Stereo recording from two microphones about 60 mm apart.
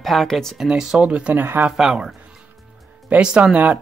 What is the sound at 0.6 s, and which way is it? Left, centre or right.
Speech, centre.